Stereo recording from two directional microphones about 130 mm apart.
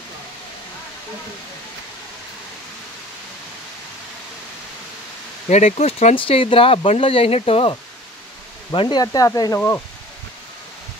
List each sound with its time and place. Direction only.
5.5 s speech: 60° left (ahead or behind)
8.7 s speech: 35° left (ahead or behind)